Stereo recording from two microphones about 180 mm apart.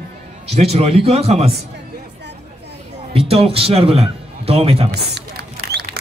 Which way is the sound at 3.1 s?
30° right (ahead or behind).